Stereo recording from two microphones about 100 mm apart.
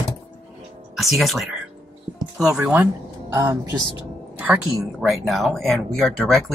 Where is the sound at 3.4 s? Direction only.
40° right (ahead or behind).